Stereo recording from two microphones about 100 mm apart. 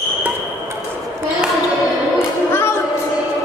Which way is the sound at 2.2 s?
25° left (ahead or behind).